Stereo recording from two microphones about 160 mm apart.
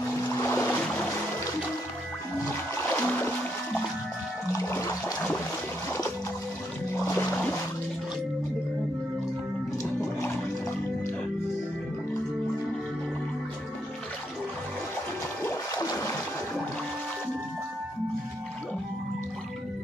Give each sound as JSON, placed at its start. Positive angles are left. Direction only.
{"t": 0.3, "sound": "music", "side_deg": 15}
{"t": 2.4, "sound": "music", "side_deg": 15}
{"t": 4.5, "sound": "music", "side_deg": 15}
{"t": 15.4, "sound": "a sound", "side_deg": 20}